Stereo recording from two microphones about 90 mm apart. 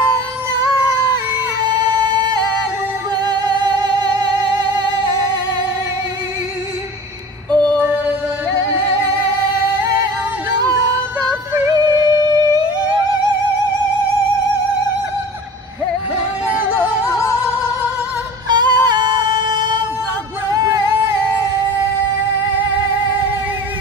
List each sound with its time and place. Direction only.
1.7 s music: 50° right (ahead or behind)
7.5 s music: 15° left (ahead or behind)
11.7 s music: 50° right (ahead or behind)
17.1 s music: 35° left (ahead or behind)
18.5 s music: 50° right (ahead or behind)